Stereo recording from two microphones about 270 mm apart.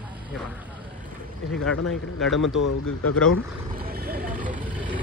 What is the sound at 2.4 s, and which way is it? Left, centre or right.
Speech, left.